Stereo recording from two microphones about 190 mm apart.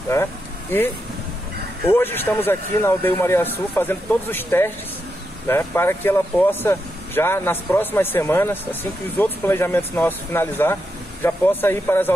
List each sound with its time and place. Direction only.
0.1 s speech: 10° left (ahead or behind)
1.9 s speech: 10° left (ahead or behind)